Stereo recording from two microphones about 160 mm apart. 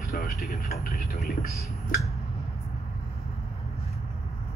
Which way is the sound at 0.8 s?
75° left (ahead or behind).